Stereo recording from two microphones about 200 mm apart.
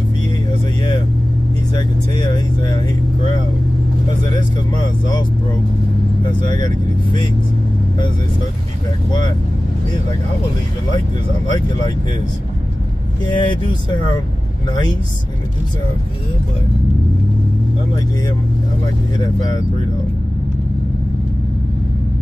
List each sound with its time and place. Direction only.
1.7 s vehicle: 20° left (ahead or behind)
6.4 s speech: 20° left (ahead or behind)
13.2 s speech: 20° left (ahead or behind)